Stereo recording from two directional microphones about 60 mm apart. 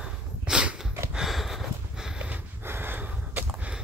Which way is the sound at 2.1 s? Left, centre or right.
Centre.